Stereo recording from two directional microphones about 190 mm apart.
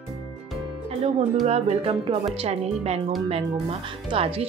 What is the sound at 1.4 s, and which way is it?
Speech, 35° right (ahead or behind).